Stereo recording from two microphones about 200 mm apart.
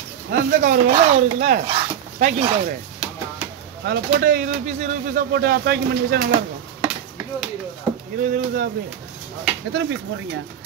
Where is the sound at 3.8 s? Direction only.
55° right (ahead or behind).